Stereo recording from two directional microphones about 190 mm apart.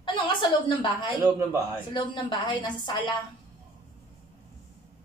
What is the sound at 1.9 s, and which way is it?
A woman's voice, 25° left (ahead or behind).